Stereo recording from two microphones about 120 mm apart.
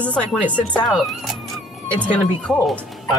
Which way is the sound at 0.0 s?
10° left (ahead or behind).